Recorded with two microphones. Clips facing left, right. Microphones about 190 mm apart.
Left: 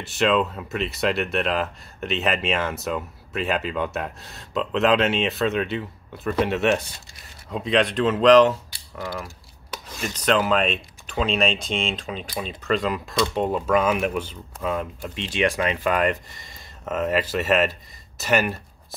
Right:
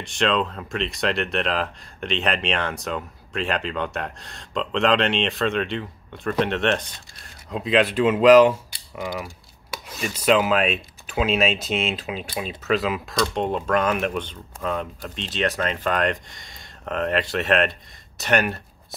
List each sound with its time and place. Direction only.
0.0 s speech: 5° left (ahead or behind)
8.7 s mechanisms: 15° right (ahead or behind)
9.2 s speech: 5° right (ahead or behind)